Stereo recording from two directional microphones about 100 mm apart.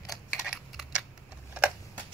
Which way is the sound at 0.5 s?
10° right (ahead or behind).